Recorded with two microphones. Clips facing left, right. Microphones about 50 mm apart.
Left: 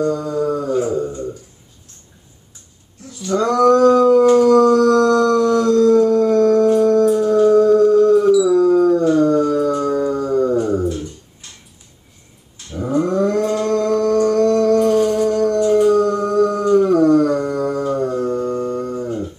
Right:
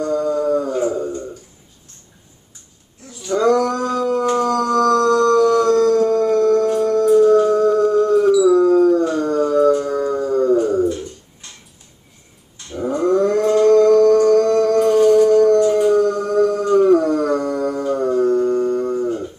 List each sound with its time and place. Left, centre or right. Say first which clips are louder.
0.0 s a sound: even; centre
3.1 s male singing: right 2 dB; centre
4.1 s howl: left 7 dB; centre
5.7 s howl: left 1 dB; right
6.0 s howl: left 2 dB; centre
7.1 s music: right 1 dB; centre
8.7 s howl: left 1 dB; centre
9.5 s music: right 3 dB; centre
9.8 s a sound: left 2 dB; centre
10.2 s dog: right 4 dB; centre
12.9 s a sound: right 1 dB; centre
15.6 s howl: left 1 dB; centre
18.9 s cattle: right 3 dB; centre